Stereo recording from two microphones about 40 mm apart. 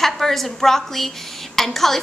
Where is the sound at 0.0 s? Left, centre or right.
Centre.